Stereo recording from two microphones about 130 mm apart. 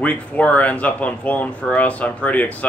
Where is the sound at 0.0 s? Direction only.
10° left (ahead or behind).